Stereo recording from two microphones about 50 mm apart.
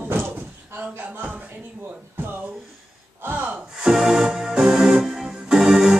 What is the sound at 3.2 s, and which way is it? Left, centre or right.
Speech, right.